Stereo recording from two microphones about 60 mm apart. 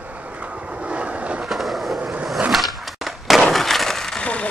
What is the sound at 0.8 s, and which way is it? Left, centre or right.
Vehicle, centre.